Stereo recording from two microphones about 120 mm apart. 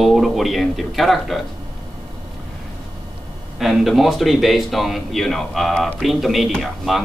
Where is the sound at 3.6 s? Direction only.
Centre (ahead or behind).